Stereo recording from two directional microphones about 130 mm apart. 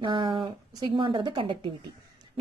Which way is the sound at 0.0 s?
40° right (ahead or behind).